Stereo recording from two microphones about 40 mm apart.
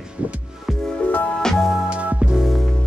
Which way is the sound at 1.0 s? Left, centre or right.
Left.